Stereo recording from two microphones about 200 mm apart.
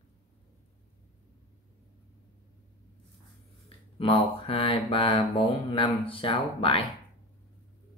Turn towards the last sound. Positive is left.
turn(degrees=25)  # may be behind; listen again after turning